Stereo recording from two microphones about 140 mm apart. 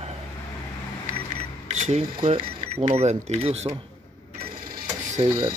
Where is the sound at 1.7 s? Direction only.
55° right (ahead or behind).